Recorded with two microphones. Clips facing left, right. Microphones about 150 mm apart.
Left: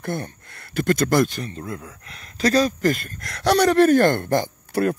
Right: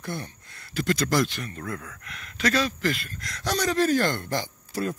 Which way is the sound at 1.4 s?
25° left (ahead or behind).